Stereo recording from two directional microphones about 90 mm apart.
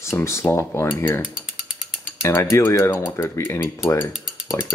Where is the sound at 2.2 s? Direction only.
35° left (ahead or behind).